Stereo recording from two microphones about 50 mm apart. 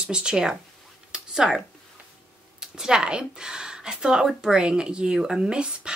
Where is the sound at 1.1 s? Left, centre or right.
Centre.